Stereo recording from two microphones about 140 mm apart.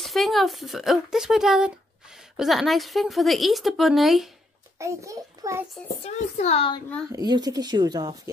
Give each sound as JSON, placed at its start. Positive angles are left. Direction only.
{"t": 0.0, "sound": "speech", "side_deg": 0}
{"t": 4.7, "sound": "a child's voice", "side_deg": -20}
{"t": 6.0, "sound": "a child's voice", "side_deg": 55}
{"t": 7.1, "sound": "speech", "side_deg": -30}